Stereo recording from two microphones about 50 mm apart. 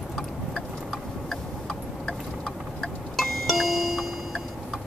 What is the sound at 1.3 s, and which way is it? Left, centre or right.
Tick-tock, centre.